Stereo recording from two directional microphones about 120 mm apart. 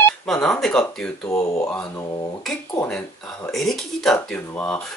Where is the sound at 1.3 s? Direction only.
25° left (ahead or behind).